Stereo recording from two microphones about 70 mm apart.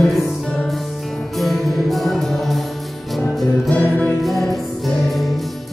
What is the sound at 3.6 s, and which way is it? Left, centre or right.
Music, centre.